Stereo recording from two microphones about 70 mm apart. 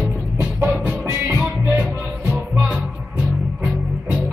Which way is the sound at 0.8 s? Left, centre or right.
Right.